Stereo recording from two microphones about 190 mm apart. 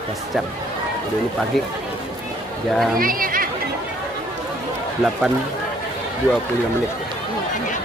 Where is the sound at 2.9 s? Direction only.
50° right (ahead or behind).